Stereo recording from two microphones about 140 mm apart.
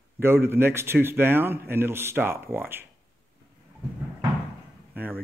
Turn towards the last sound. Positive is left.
turn(degrees=-15)  # may be behind; listen again after turning